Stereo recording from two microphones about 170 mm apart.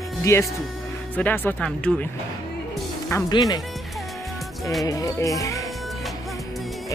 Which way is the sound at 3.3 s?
25° left (ahead or behind).